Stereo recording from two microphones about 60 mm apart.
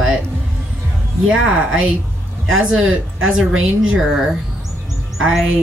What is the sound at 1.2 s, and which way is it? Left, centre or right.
A woman's voice, centre.